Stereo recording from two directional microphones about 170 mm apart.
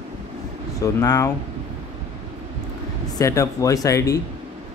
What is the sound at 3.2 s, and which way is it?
Speech, 20° left (ahead or behind).